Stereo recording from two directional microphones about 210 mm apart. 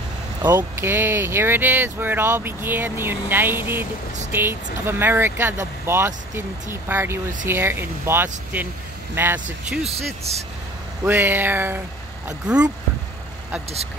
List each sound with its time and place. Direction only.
0.4 s speech: 10° right (ahead or behind)
9.8 s speech: 30° right (ahead or behind)
11.1 s speech: 10° right (ahead or behind)